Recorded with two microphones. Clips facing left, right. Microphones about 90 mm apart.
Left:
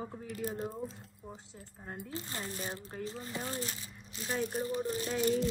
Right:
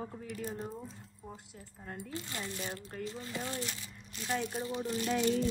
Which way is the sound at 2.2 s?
35° left (ahead or behind).